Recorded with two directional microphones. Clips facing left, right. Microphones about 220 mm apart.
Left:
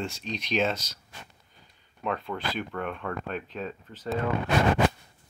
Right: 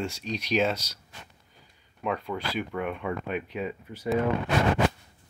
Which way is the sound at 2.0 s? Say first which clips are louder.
Right 1 dB; 10° right (ahead or behind).